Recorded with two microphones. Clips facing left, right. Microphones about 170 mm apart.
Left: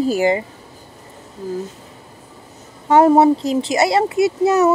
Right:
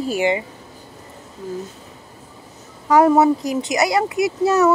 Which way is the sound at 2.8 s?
30° left (ahead or behind).